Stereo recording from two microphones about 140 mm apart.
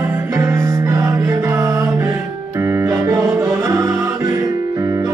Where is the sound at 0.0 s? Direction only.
20° right (ahead or behind).